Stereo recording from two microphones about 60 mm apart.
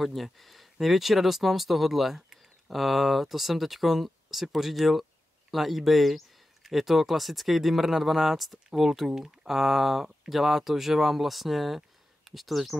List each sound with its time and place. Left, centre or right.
0.0 s speech: centre